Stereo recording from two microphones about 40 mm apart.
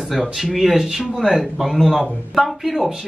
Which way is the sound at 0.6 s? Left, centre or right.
Centre.